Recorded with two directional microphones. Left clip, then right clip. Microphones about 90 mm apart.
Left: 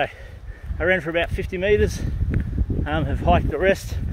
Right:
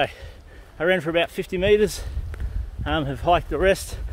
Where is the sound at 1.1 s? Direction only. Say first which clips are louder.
Right 1 dB; 30° right (ahead or behind).